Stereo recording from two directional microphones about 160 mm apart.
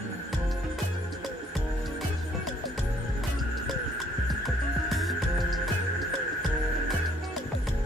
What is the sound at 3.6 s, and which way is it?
Music, centre (ahead or behind).